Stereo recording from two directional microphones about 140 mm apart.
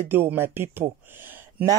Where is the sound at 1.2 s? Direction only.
15° right (ahead or behind).